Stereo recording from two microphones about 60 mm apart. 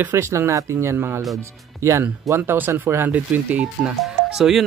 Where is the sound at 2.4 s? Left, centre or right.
Right.